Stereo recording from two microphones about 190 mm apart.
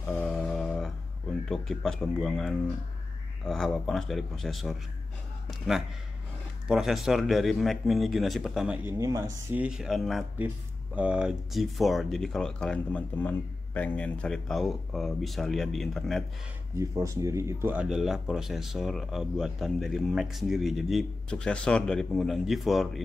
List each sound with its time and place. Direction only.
0.0 s a sound: 5° left (ahead or behind)
1.5 s speech: centre (ahead or behind)
6.7 s speech: centre (ahead or behind)
8.9 s speech: 20° right (ahead or behind)
9.6 s speech: 5° right (ahead or behind)
16.7 s speech: 15° right (ahead or behind); by 23.0 s centre (ahead or behind)